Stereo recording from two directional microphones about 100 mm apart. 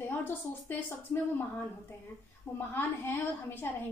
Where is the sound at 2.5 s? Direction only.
20° left (ahead or behind).